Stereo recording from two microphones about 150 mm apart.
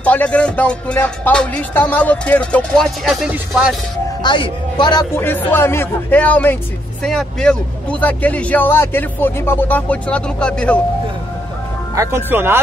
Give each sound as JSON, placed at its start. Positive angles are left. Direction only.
{"t": 0.0, "sound": "speech", "side_deg": 10}
{"t": 4.2, "sound": "a man's voice", "side_deg": 30}
{"t": 5.1, "sound": "speech", "side_deg": 15}
{"t": 11.9, "sound": "speech", "side_deg": -20}